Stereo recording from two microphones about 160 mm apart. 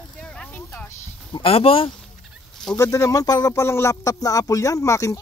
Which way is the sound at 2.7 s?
20° left (ahead or behind).